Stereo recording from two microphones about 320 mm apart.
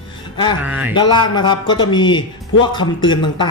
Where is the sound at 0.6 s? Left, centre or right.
Centre.